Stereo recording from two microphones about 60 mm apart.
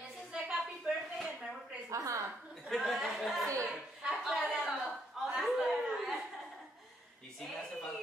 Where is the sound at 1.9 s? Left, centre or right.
Right.